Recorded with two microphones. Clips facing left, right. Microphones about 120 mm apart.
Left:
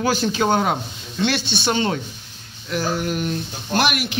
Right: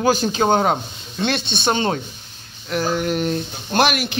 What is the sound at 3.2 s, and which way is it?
Speech, 30° right (ahead or behind).